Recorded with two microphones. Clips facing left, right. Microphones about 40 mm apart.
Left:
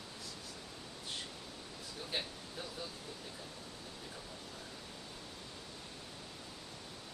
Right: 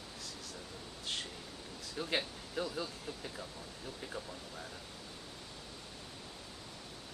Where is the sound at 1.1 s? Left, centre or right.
Right.